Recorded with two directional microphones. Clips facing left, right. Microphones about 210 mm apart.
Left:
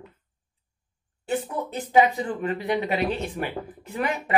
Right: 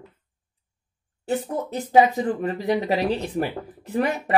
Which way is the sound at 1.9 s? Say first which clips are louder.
Right 3 dB; 40° right (ahead or behind).